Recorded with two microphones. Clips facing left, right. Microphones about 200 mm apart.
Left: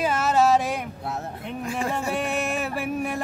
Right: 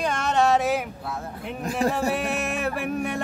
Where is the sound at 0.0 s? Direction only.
5° left (ahead or behind).